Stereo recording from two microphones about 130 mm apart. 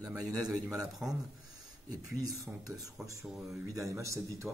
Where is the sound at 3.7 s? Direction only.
25° right (ahead or behind).